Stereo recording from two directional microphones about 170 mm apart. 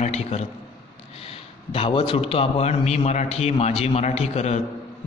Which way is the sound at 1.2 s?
35° left (ahead or behind).